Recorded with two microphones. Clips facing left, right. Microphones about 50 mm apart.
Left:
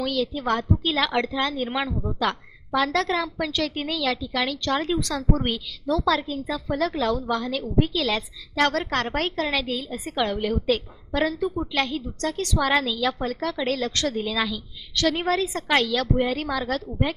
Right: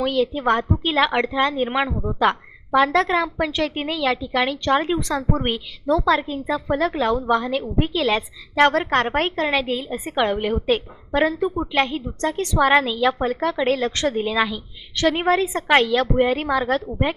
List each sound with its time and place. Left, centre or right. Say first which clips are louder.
0.0 s a woman's voice: right 5 dB; right